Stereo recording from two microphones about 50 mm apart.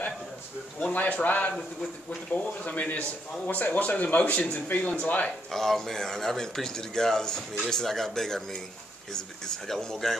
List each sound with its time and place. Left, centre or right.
0.9 s speech: left
5.5 s a man's voice: centre